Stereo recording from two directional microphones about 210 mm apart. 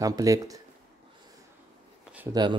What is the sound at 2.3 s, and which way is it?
Speech, 20° right (ahead or behind).